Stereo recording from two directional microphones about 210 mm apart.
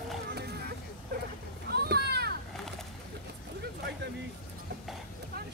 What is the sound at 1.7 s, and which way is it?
Children playing, 50° right (ahead or behind).